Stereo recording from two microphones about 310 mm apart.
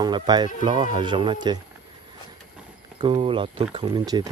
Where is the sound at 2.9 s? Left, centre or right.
Centre.